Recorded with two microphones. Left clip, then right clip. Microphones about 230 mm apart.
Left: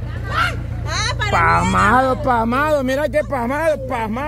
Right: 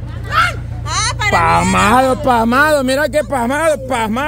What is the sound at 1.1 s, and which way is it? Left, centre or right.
Music, right.